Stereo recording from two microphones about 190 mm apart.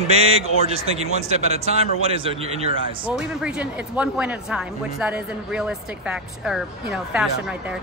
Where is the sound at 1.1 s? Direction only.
35° right (ahead or behind).